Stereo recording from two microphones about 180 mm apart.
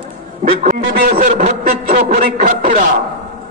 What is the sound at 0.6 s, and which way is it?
A man's voice, 50° right (ahead or behind).